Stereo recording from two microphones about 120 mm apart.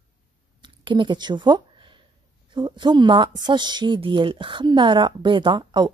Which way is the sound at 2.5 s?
40° right (ahead or behind).